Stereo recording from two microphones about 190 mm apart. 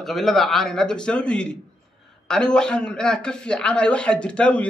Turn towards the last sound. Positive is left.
turn(degrees=5)  # may be behind; listen again after turning